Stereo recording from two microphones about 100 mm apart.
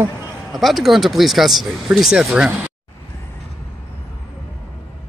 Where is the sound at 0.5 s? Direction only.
Centre (ahead or behind).